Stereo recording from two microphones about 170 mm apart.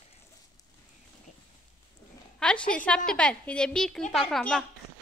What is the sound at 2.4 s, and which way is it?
A woman's voice, 5° left (ahead or behind).